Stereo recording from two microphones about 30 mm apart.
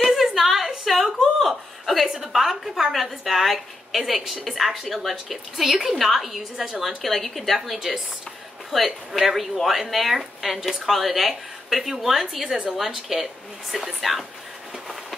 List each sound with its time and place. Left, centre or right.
0.2 s a sound: centre
1.2 s chuckle: centre
2.0 s a sound: right
2.3 s a woman's voice: centre
6.5 s a woman's voice: right
7.0 s a woman's voice: centre
7.5 s a woman's voice: centre